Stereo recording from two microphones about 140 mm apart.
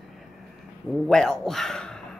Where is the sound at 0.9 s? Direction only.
5° left (ahead or behind).